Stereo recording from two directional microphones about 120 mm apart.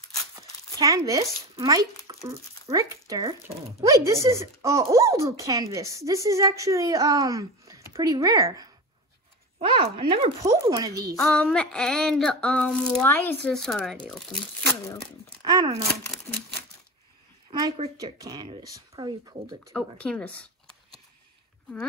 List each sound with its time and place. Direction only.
0.4 s speech: 30° right (ahead or behind)
9.6 s speech: 45° right (ahead or behind)
10.4 s speech: 25° right (ahead or behind)
11.1 s a sound: 5° left (ahead or behind)
13.4 s speech: 5° left (ahead or behind)
15.4 s speech: 35° right (ahead or behind)
16.3 s a sound: 15° left (ahead or behind)
17.5 s speech: 35° right (ahead or behind)
18.3 s speech: 45° right (ahead or behind)
18.6 s speech: 35° right (ahead or behind)
19.6 s a sound: 5° left (ahead or behind)